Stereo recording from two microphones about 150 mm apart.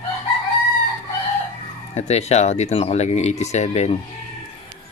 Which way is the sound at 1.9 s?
45° left (ahead or behind).